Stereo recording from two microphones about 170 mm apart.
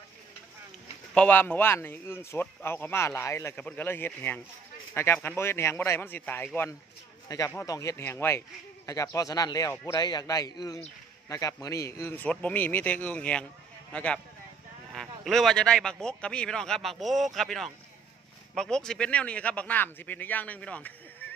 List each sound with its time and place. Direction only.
1.1 s speech: 10° left (ahead or behind)